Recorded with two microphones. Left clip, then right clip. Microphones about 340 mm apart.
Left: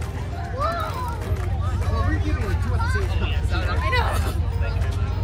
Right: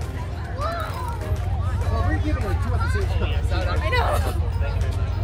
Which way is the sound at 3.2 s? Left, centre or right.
Right.